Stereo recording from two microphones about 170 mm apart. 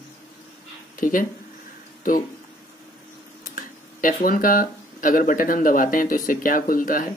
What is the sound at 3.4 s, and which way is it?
Speech, 55° left (ahead or behind).